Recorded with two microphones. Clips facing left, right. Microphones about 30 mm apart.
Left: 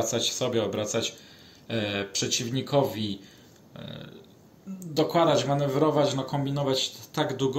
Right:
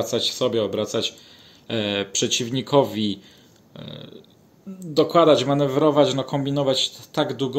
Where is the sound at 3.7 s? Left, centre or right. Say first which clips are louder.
Right 3 dB; right.